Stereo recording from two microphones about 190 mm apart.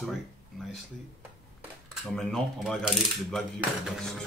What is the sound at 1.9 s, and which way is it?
Speech, centre (ahead or behind).